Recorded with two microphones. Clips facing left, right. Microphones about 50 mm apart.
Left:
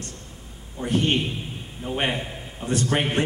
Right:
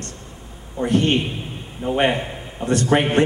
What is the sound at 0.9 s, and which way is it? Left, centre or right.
Speech, centre.